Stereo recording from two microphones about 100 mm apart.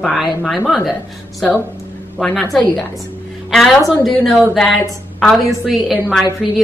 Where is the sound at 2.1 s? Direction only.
10° left (ahead or behind).